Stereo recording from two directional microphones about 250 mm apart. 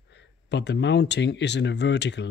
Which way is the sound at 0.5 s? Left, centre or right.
Left.